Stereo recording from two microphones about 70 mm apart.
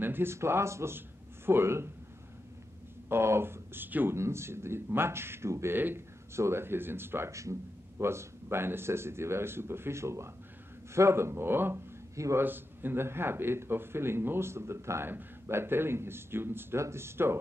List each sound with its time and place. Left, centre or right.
0.0 s a man's voice: right
3.1 s a man's voice: right
4.2 s a man's voice: right